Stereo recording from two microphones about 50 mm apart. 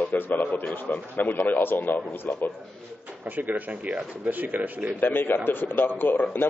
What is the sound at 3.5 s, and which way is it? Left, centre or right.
Speech, right.